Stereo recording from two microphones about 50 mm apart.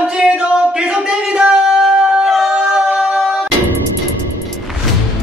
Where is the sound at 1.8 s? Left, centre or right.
Centre.